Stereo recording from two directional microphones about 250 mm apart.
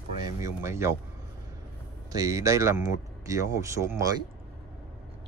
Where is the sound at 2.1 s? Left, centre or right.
Centre.